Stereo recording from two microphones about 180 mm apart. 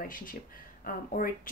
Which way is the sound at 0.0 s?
50° left (ahead or behind).